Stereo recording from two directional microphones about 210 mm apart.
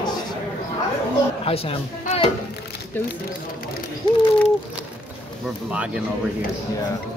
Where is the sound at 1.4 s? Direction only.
25° left (ahead or behind).